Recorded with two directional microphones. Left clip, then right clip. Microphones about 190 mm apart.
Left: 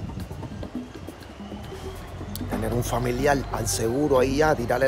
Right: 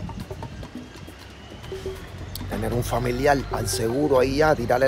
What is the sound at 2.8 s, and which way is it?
Speech, 10° left (ahead or behind).